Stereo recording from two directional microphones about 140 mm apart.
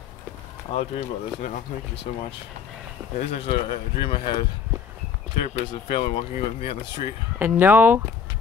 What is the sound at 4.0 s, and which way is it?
Speech, 35° left (ahead or behind).